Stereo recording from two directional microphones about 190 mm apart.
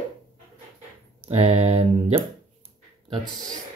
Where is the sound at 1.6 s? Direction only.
30° right (ahead or behind).